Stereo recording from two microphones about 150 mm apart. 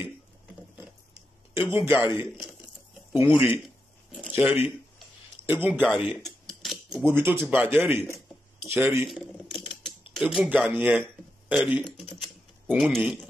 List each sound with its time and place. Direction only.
1.5 s speech: 15° right (ahead or behind)
3.1 s speech: 15° right (ahead or behind)
6.2 s a sound: centre (ahead or behind)
7.1 s speech: 15° right (ahead or behind)
9.0 s typewriter: centre (ahead or behind)
10.1 s a man's voice: 5° right (ahead or behind)
12.2 s typewriter: centre (ahead or behind)